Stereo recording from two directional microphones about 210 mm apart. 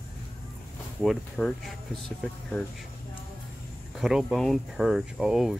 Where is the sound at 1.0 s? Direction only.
5° left (ahead or behind).